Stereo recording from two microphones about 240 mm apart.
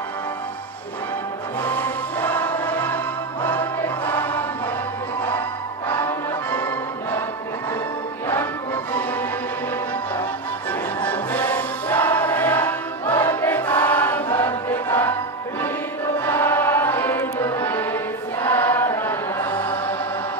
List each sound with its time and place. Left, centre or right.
1.6 s music: centre
3.4 s choir: centre
5.9 s music: centre
11.0 s music: centre
16.3 s music: centre
18.4 s chant: centre